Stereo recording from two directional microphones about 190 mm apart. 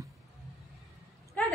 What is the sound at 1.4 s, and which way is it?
Speech, 10° left (ahead or behind).